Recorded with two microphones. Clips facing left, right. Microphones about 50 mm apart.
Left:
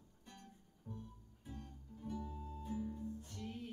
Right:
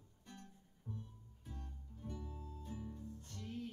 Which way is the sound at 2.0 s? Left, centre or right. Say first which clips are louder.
Left 4 dB; centre.